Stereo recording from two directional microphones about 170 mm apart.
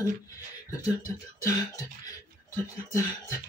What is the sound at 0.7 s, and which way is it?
Beatboxing, 20° left (ahead or behind).